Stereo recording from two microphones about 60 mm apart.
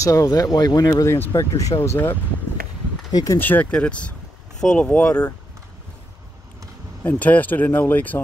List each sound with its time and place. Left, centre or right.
0.0 s speech: left
1.3 s speech: left
1.8 s speech: left
3.1 s speech: left
3.3 s speech: left
3.7 s speech: centre
7.0 s speech: left